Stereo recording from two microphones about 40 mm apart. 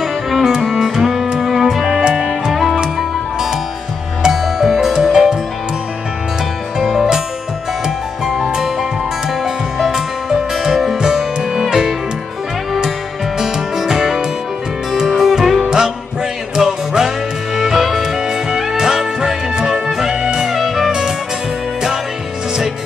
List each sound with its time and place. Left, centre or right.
0.4 s music: centre
2.5 s music: centre
4.2 s music: centre
6.8 s music: centre
8.5 s music: centre
13.4 s music: centre